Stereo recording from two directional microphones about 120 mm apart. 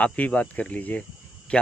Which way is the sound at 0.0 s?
10° left (ahead or behind).